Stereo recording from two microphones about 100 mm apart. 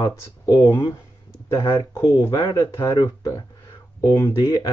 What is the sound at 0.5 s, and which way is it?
Speech, 30° left (ahead or behind).